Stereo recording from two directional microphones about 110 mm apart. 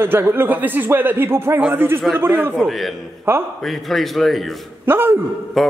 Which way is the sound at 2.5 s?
Centre (ahead or behind).